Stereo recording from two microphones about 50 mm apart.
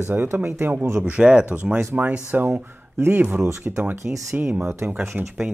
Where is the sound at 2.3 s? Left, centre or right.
Right.